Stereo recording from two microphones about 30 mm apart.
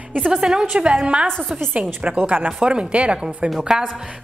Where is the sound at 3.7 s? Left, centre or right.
Right.